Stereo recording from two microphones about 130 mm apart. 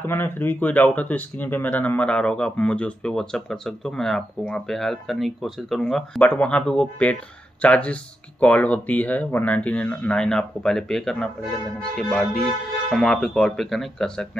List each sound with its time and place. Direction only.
0.0 s speech: 15° left (ahead or behind)